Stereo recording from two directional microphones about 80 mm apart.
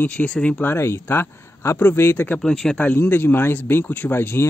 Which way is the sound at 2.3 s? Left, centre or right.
Centre.